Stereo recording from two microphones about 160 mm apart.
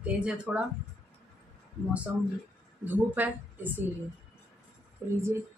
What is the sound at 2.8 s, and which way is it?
A woman's voice, 10° right (ahead or behind).